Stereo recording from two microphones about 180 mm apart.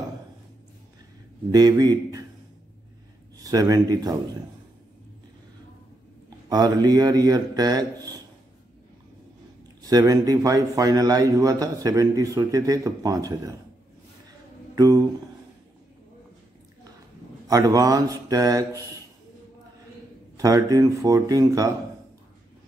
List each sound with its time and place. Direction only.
1.5 s a man's voice: 20° right (ahead or behind)
3.4 s a man's voice: 20° right (ahead or behind)
6.5 s a man's voice: 20° right (ahead or behind)
9.8 s a man's voice: 20° right (ahead or behind)
14.8 s a man's voice: 20° right (ahead or behind)
17.5 s a man's voice: 20° right (ahead or behind)
20.3 s a man's voice: 20° right (ahead or behind)